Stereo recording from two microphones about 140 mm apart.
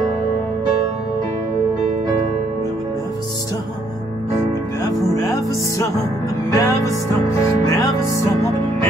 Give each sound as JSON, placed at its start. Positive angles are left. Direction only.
{"t": 4.8, "sound": "music", "side_deg": 25}